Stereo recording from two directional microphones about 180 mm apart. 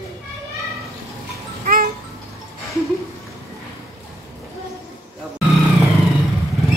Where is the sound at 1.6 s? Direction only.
55° right (ahead or behind).